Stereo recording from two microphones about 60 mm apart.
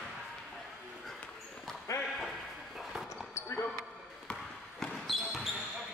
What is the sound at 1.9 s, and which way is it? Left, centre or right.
Ping, left.